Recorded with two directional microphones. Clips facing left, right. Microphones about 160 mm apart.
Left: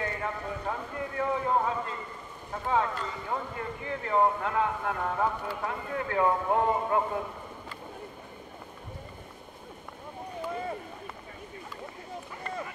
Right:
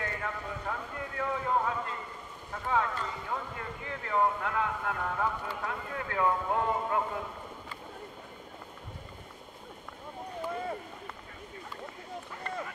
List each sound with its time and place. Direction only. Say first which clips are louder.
0.0 s speech: left 3 dB; 25° left (ahead or behind)
10.5 s a sound: left 1 dB; 5° left (ahead or behind)
12.4 s run: left 1 dB; 5° left (ahead or behind)